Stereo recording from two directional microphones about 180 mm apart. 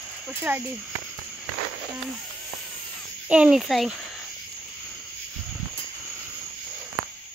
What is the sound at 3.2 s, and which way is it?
Speech, 5° right (ahead or behind).